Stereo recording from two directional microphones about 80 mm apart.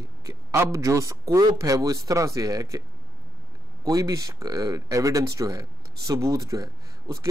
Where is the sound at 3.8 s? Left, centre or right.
Right.